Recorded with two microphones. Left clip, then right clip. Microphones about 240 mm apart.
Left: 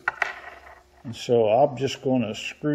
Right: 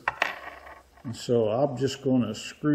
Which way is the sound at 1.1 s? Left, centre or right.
Centre.